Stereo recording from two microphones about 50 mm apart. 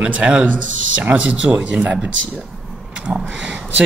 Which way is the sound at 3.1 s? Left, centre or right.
Right.